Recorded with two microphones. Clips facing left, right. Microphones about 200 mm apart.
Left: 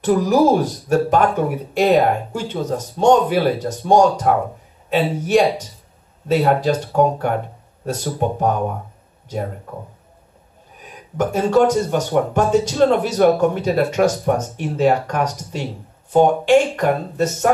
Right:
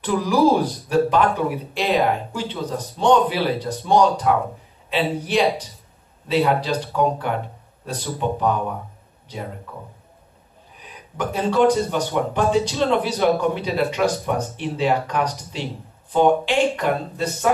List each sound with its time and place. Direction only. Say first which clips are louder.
0.0 s speech: left 3 dB; 45° left (ahead or behind)
10.8 s speech: left 6 dB; 45° left (ahead or behind)